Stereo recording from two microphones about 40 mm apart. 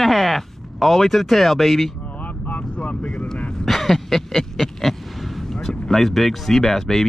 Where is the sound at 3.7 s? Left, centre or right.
Centre.